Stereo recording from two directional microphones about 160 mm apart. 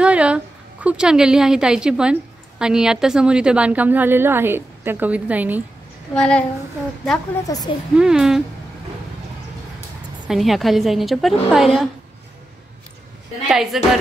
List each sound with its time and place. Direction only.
0.0 s a woman's voice: 5° right (ahead or behind)
6.1 s a woman's voice: 5° left (ahead or behind)
7.3 s a woman's voice: 20° left (ahead or behind)
8.0 s a woman's voice: 5° right (ahead or behind)
10.2 s a woman's voice: centre (ahead or behind)
13.5 s a woman's voice: centre (ahead or behind)